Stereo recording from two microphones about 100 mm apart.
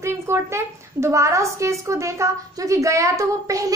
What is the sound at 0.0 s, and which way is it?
A woman's voice, 25° right (ahead or behind).